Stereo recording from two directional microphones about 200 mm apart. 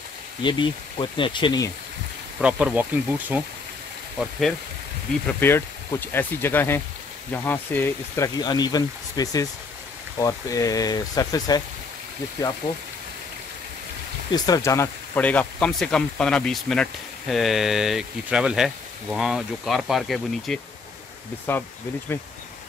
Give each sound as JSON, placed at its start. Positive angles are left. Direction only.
{"t": 0.4, "sound": "speech", "side_deg": 25}
{"t": 2.4, "sound": "speech", "side_deg": -5}
{"t": 14.3, "sound": "speech", "side_deg": 20}